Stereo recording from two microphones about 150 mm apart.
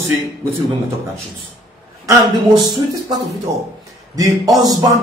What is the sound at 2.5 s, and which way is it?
Speech, 30° right (ahead or behind).